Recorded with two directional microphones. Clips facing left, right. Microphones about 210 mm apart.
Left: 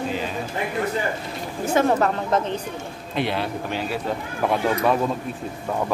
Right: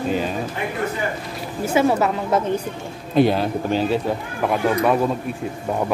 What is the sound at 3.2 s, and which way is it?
Speech, 40° right (ahead or behind).